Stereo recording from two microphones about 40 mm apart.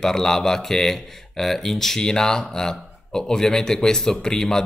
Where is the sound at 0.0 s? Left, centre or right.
Centre.